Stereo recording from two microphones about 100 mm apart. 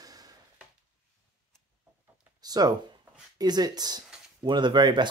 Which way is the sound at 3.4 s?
45° right (ahead or behind).